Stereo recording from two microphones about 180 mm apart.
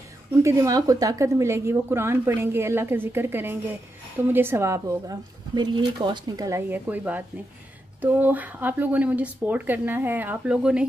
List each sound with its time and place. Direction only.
0.4 s a woman's voice: 15° right (ahead or behind)